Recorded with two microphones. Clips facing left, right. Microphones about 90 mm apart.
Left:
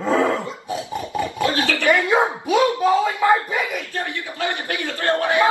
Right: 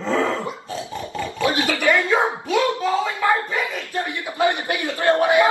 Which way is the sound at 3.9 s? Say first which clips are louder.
Right 3 dB; 20° right (ahead or behind).